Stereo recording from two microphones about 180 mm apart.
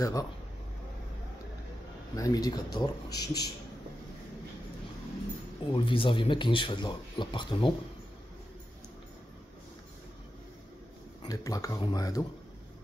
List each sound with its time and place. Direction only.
0.0 s speech: 20° left (ahead or behind)
2.1 s speech: 20° left (ahead or behind)
5.7 s speech: 30° left (ahead or behind)
11.2 s speech: 20° left (ahead or behind)